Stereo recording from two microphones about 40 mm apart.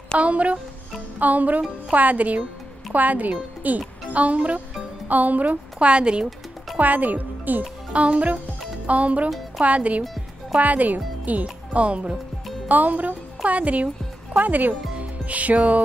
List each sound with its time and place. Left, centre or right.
0.2 s a woman's voice: right
6.8 s speech: right
7.9 s a woman's voice: right
11.7 s a woman's voice: right
12.6 s speech: right